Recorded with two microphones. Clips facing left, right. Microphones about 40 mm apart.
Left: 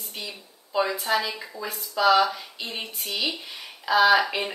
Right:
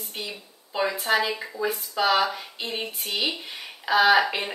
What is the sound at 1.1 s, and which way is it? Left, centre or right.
Speech, right.